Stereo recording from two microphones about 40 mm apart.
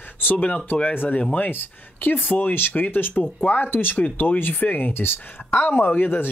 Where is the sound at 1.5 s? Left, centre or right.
Left.